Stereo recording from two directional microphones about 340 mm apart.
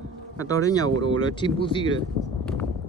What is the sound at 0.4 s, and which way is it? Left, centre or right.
Speech, centre.